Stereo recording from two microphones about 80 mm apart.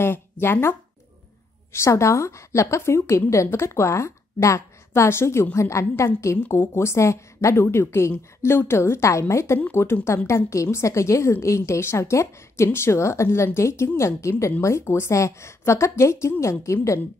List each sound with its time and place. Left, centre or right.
0.0 s a woman's voice: left